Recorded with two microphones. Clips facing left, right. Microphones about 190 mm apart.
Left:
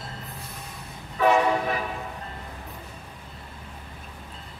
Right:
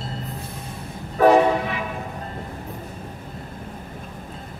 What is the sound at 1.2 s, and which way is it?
Train, 45° right (ahead or behind).